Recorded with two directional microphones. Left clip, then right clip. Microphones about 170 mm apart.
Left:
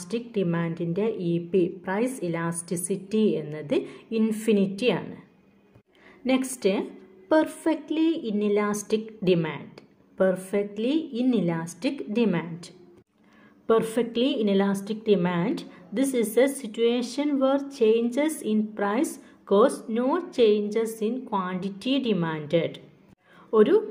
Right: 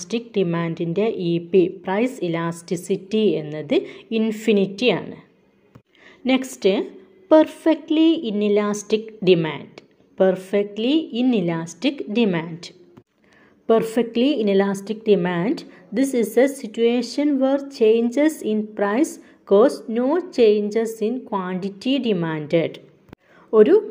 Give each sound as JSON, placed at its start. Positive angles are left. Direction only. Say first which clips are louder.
{"t": 0.0, "sound": "a woman's voice", "louder": "right 6 dB", "side_deg": -25}
{"t": 6.2, "sound": "a woman's voice", "louder": "right 5 dB", "side_deg": -20}